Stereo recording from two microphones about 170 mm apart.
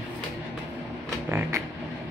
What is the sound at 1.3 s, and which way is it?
Music, 15° right (ahead or behind).